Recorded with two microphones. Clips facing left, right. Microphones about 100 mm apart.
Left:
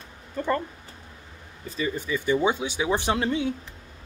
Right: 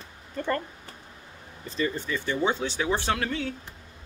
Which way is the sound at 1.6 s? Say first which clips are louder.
Even; 10° left (ahead or behind).